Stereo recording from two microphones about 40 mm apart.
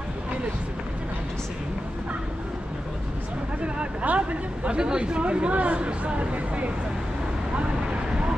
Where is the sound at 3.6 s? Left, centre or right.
Right.